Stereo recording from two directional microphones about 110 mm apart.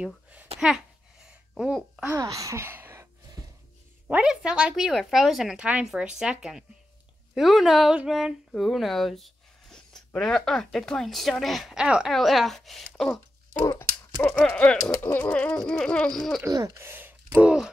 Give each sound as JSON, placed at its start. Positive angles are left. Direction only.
{"t": 0.0, "sound": "a sound", "side_deg": -10}
{"t": 1.5, "sound": "speech", "side_deg": 0}
{"t": 2.1, "sound": "speech", "side_deg": -30}
{"t": 3.4, "sound": "music", "side_deg": -35}
{"t": 4.1, "sound": "speech", "side_deg": -5}
{"t": 14.2, "sound": "speech", "side_deg": 15}
{"t": 14.9, "sound": "speech", "side_deg": 20}
{"t": 16.4, "sound": "speech", "side_deg": -30}